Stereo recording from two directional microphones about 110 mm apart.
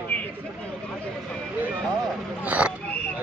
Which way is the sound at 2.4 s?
10° right (ahead or behind).